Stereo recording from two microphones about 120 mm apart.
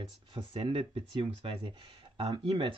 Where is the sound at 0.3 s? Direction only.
50° right (ahead or behind).